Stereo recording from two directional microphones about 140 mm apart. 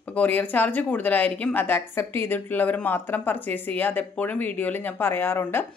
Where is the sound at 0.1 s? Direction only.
10° left (ahead or behind).